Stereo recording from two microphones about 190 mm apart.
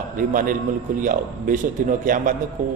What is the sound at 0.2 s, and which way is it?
A man's voice, 45° right (ahead or behind).